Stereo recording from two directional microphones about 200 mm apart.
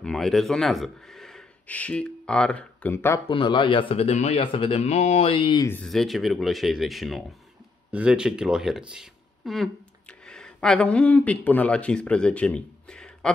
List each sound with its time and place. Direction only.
0.0 s speech: centre (ahead or behind)
3.3 s speech: 25° left (ahead or behind)
5.7 s speech: 5° left (ahead or behind)